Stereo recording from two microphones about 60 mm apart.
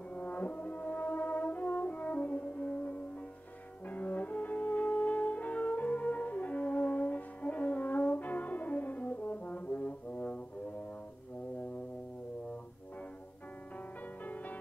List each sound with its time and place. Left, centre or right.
0.1 s brass instrument: left
14.2 s music: left